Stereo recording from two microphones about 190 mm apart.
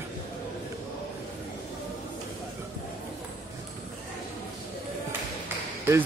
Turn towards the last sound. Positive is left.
turn(degrees=-10)  # may be behind; listen again after turning